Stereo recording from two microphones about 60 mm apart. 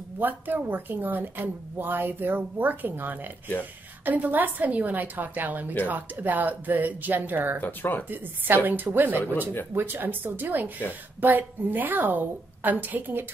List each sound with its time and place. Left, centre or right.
0.2 s a woman's voice: right
7.6 s speech: left
8.1 s speech: right